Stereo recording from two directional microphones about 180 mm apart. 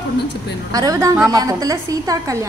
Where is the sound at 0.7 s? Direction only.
20° right (ahead or behind).